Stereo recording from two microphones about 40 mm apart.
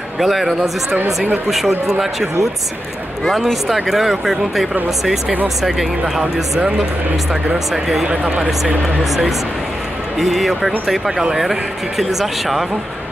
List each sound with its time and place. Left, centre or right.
0.2 s speech: centre
1.9 s speech: centre
3.6 s speech: centre
8.1 s speech: right
8.8 s speech: centre